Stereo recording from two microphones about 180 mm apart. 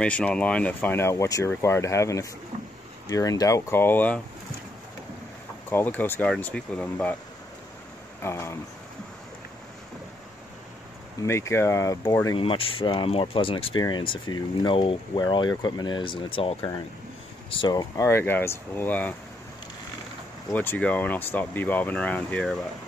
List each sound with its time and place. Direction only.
0.0 s speech: 5° left (ahead or behind)
5.7 s speech: 10° left (ahead or behind)
8.2 s speech: 15° left (ahead or behind)
11.2 s speech: 15° left (ahead or behind)
12.4 s speech: 30° left (ahead or behind); by 19.1 s 10° left (ahead or behind)
20.5 s speech: 10° left (ahead or behind)